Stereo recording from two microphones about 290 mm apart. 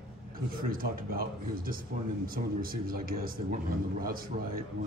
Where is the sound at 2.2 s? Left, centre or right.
Right.